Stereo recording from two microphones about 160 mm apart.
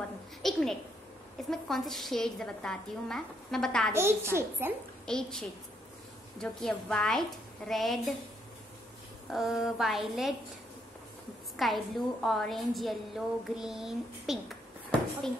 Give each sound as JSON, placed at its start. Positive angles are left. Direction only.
{"t": 0.4, "sound": "a woman's voice", "side_deg": 0}
{"t": 3.9, "sound": "a child's voice", "side_deg": -15}
{"t": 5.0, "sound": "a woman's voice", "side_deg": 5}
{"t": 9.3, "sound": "a woman's voice", "side_deg": 0}
{"t": 11.5, "sound": "a woman's voice", "side_deg": 0}